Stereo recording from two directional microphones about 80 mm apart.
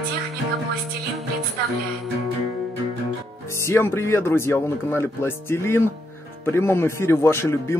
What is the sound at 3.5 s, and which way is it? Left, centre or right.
Speech, left.